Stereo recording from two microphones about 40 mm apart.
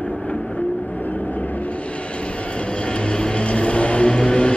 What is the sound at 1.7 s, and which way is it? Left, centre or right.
Vehicle, left.